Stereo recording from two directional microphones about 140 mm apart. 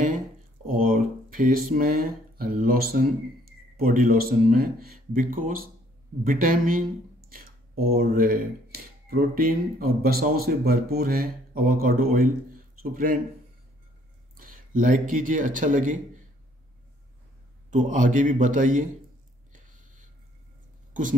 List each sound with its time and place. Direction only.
0.7 s speech: 90° right
5.1 s speech: 75° right (ahead or behind)
14.4 s a man's voice: 65° right (ahead or behind)
17.6 s a man's voice: 65° right (ahead or behind)
20.9 s speech: 70° right (ahead or behind)